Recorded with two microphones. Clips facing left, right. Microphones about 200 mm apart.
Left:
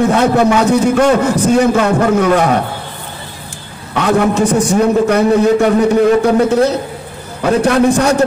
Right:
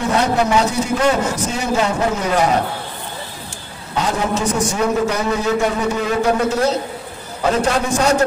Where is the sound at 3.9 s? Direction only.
60° left (ahead or behind).